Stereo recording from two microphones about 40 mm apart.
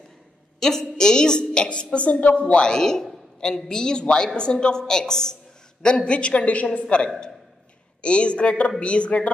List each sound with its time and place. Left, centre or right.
0.6 s a woman's voice: centre; by 2.7 s left
2.7 s a man's voice: centre; by 6.8 s left
6.8 s a woman's voice: left